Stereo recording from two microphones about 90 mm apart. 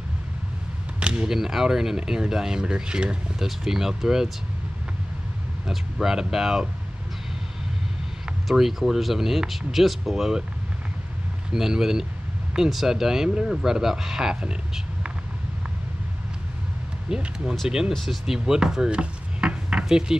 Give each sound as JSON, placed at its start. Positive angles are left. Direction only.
{"t": 0.9, "sound": "speech", "side_deg": -10}
{"t": 5.7, "sound": "speech", "side_deg": -5}
{"t": 8.5, "sound": "speech", "side_deg": -5}
{"t": 11.5, "sound": "speech", "side_deg": -5}
{"t": 17.1, "sound": "speech", "side_deg": -10}